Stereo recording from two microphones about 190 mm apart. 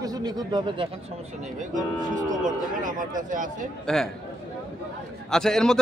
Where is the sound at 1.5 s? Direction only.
40° right (ahead or behind).